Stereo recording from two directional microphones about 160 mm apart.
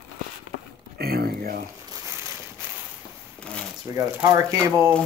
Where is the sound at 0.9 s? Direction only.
75° right (ahead or behind).